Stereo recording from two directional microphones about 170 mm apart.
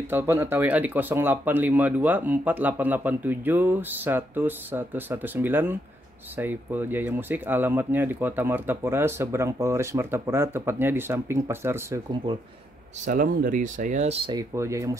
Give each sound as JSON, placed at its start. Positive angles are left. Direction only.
{"t": 0.1, "sound": "speech", "side_deg": -15}
{"t": 13.0, "sound": "speech", "side_deg": -50}
{"t": 14.3, "sound": "speech", "side_deg": -15}